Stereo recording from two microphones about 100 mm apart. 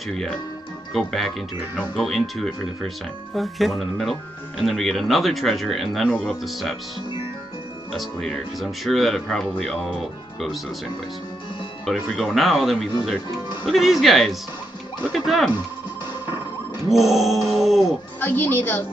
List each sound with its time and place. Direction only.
0.1 s speech: 5° left (ahead or behind)
7.9 s speech: 5° left (ahead or behind)
11.8 s speech: centre (ahead or behind)
16.9 s speech: centre (ahead or behind)
18.2 s a woman's voice: 20° left (ahead or behind)